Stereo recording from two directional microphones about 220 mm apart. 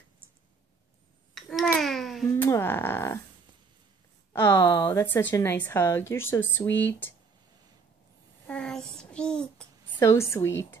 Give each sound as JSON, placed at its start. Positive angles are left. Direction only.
{"t": 1.3, "sound": "babbling", "side_deg": 0}
{"t": 4.3, "sound": "a woman's voice", "side_deg": 15}
{"t": 8.5, "sound": "a sound", "side_deg": 5}
{"t": 9.9, "sound": "a woman's voice", "side_deg": 15}